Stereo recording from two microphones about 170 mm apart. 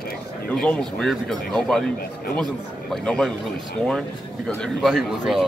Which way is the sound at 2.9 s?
5° left (ahead or behind).